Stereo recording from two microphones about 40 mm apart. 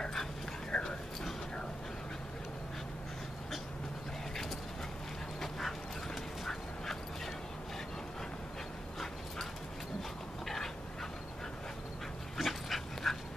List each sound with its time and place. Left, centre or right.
0.0 s dog: centre
0.7 s dog: left
5.4 s duck: centre
12.4 s dog: centre